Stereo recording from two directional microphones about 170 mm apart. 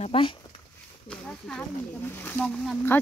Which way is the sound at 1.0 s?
5° left (ahead or behind).